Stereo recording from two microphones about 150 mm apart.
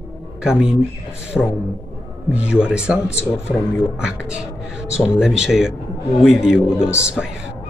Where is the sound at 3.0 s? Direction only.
15° left (ahead or behind).